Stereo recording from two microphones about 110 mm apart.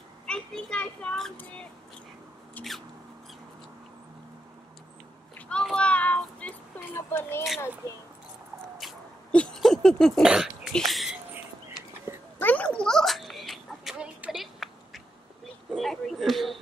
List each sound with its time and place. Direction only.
0.3 s children playing: 10° left (ahead or behind)
1.3 s speech: 15° left (ahead or behind)
5.5 s child singing: 5° left (ahead or behind)
9.3 s a sound: 5° left (ahead or behind)
10.3 s cough: 5° right (ahead or behind)
10.7 s speech: centre (ahead or behind)
12.4 s a sound: 15° left (ahead or behind)